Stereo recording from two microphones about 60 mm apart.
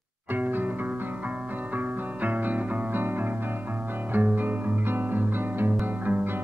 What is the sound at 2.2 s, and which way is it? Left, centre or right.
Music, right.